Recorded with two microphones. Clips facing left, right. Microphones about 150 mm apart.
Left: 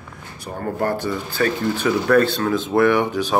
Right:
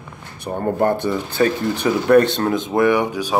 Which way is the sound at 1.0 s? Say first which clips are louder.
Right 3 dB; 20° right (ahead or behind).